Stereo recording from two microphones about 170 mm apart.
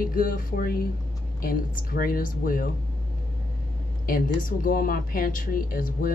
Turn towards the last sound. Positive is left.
turn(degrees=55)  # may be behind; listen again after turning